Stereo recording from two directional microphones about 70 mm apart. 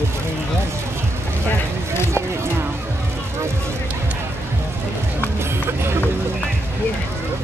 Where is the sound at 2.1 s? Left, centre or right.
Right.